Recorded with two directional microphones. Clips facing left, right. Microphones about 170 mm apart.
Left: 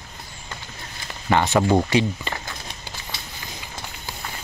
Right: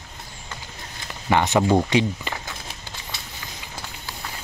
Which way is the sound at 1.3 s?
15° right (ahead or behind).